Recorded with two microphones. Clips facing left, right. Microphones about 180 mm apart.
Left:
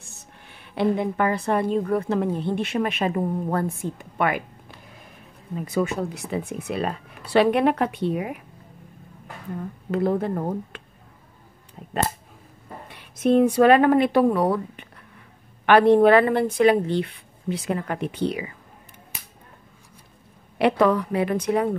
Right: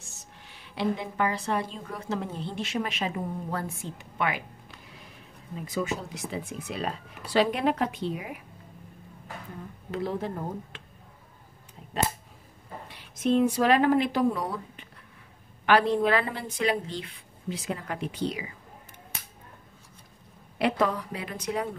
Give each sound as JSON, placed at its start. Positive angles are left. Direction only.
{"t": 0.1, "sound": "a woman's voice", "side_deg": 55}
{"t": 5.7, "sound": "a woman's voice", "side_deg": 60}
{"t": 9.8, "sound": "speech", "side_deg": 55}
{"t": 12.8, "sound": "a woman's voice", "side_deg": 55}
{"t": 20.5, "sound": "a woman's voice", "side_deg": 65}